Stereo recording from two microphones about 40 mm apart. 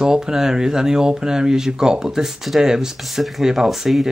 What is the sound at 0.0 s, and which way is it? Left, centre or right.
Speech, centre.